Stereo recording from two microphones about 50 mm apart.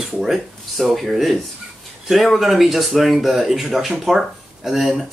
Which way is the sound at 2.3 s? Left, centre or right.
Centre.